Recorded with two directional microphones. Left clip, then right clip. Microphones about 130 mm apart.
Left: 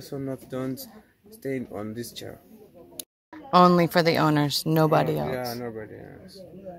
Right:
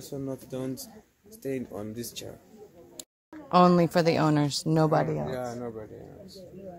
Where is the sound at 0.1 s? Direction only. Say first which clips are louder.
Left 3 dB; 50° left (ahead or behind).